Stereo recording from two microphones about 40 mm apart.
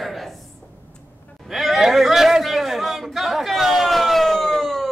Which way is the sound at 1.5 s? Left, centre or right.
Centre.